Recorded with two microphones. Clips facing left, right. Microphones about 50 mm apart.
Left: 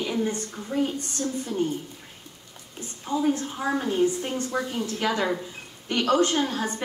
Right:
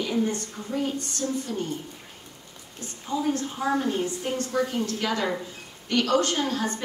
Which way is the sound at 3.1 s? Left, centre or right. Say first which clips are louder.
Left 2 dB; left.